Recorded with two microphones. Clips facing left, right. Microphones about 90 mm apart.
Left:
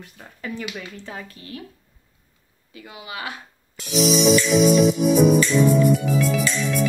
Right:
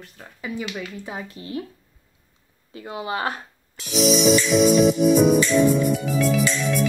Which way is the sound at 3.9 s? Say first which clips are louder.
Even; centre (ahead or behind).